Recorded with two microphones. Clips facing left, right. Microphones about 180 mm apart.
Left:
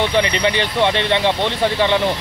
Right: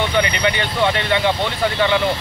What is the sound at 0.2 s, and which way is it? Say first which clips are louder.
Speech: left 1 dB; 30° left (ahead or behind).